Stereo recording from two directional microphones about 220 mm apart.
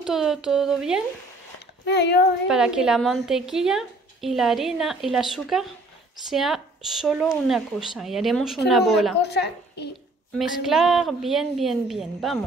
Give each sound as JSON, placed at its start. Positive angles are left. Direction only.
{"t": 0.0, "sound": "a woman's voice", "side_deg": 0}
{"t": 1.9, "sound": "speech", "side_deg": 50}
{"t": 2.4, "sound": "a woman's voice", "side_deg": -5}
{"t": 9.2, "sound": "a child's voice", "side_deg": 50}
{"t": 10.3, "sound": "a woman's voice", "side_deg": 0}